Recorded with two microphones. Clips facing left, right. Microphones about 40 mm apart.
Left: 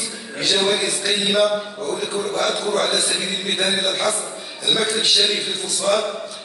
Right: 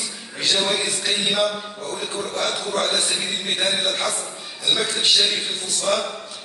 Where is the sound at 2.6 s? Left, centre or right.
Centre.